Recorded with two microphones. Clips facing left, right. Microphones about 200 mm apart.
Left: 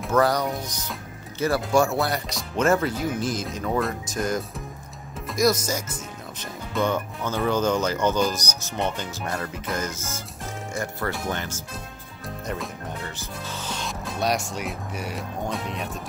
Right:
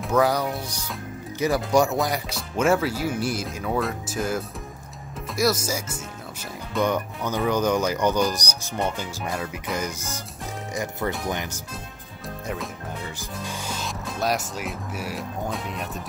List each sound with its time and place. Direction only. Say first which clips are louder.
0.0 s speech: even; 10° right (ahead or behind)
13.4 s music: right 1 dB; 10° right (ahead or behind)
13.8 s speech: left 1 dB; centre (ahead or behind)